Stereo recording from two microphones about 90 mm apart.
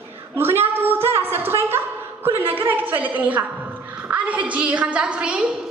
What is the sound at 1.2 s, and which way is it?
A woman's voice, 25° right (ahead or behind).